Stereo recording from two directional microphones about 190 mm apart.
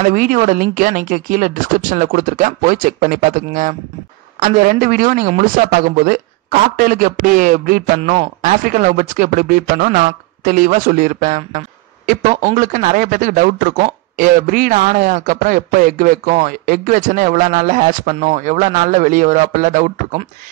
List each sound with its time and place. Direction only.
0.1 s speech: 45° right (ahead or behind)
8.0 s a man's voice: 30° right (ahead or behind)
8.4 s speech: 45° right (ahead or behind)